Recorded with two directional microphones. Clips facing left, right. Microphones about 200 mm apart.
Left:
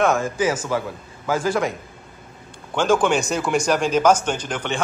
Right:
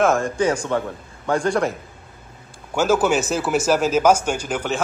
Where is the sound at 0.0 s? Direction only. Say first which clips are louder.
Right 1 dB; centre (ahead or behind).